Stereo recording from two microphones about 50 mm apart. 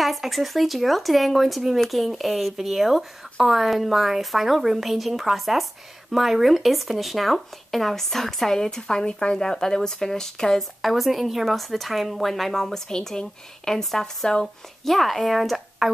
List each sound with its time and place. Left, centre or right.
0.0 s a woman's voice: centre
10.8 s a woman's voice: centre